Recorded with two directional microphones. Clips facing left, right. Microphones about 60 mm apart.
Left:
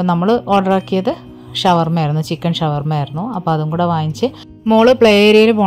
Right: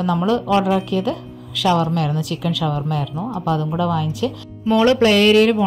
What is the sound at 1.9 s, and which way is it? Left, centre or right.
Speech, left.